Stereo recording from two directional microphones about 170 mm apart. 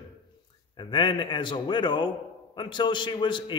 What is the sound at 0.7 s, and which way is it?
A man's voice, 25° left (ahead or behind).